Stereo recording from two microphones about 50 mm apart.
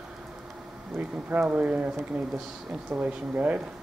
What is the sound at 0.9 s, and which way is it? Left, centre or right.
Speech, right.